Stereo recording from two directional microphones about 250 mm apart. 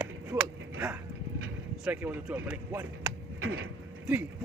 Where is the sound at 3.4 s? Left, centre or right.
Right.